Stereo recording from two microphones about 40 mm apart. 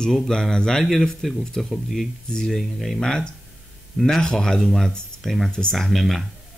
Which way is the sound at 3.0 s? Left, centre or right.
Centre.